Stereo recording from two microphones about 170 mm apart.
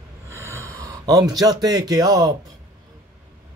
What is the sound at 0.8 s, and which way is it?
Speech, 20° right (ahead or behind).